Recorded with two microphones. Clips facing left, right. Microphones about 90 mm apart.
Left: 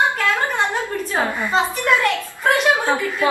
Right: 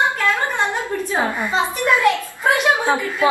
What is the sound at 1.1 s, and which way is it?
A woman's voice, 20° right (ahead or behind).